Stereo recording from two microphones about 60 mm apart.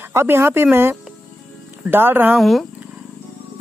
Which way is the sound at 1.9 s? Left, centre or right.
Right.